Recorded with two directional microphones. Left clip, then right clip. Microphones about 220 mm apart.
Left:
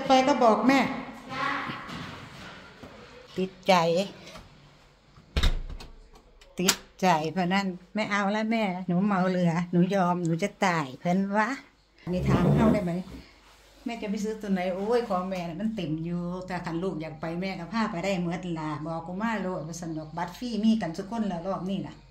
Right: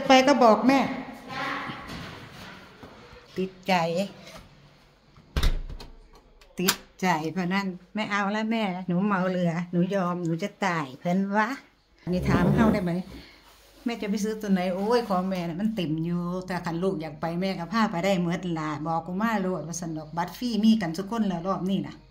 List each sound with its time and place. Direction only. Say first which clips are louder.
0.1 s a woman's voice: right 3 dB; 20° right (ahead or behind)
3.3 s speech: left 2 dB; 15° left (ahead or behind)
6.5 s speech: even; 10° left (ahead or behind)
12.1 s a woman's voice: right 1 dB; 15° right (ahead or behind)
13.8 s speech: right 3 dB; 25° right (ahead or behind)